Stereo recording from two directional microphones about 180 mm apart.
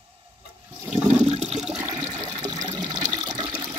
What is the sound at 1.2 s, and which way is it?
Toilet flush, 35° right (ahead or behind).